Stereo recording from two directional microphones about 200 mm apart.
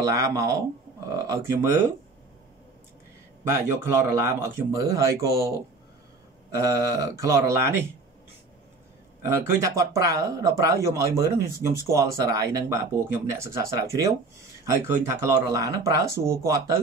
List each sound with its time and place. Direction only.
0.0 s speech: 15° right (ahead or behind)
3.5 s speech: 15° right (ahead or behind)
6.5 s speech: 15° right (ahead or behind)
9.2 s speech: 15° right (ahead or behind)